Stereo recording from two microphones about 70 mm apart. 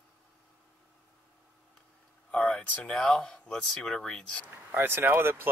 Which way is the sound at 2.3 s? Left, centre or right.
Centre.